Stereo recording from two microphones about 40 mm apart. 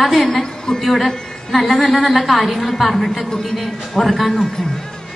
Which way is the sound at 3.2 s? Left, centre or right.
Centre.